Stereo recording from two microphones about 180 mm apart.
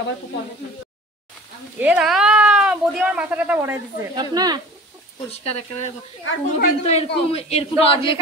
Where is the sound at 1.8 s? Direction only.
5° right (ahead or behind).